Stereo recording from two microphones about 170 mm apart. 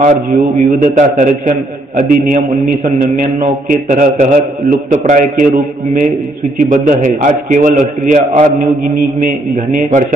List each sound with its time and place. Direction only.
0.0 s a man's voice: 45° right (ahead or behind)
6.7 s a man's voice: 50° right (ahead or behind)